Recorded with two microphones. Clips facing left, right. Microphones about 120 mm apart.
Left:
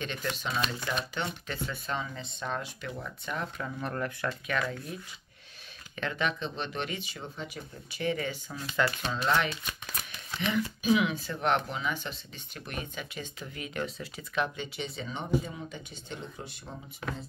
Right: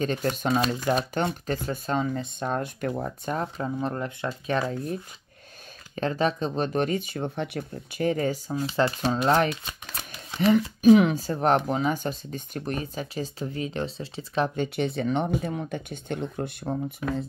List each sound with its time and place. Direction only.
0.0 s speech: 40° right (ahead or behind); by 4.3 s 25° right (ahead or behind)
4.5 s speech: 35° right (ahead or behind); by 8.0 s 65° right (ahead or behind)
8.0 s speech: 40° right (ahead or behind)
14.6 s speech: 55° right (ahead or behind)